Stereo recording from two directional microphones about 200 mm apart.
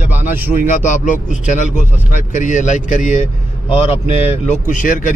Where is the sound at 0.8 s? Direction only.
40° left (ahead or behind).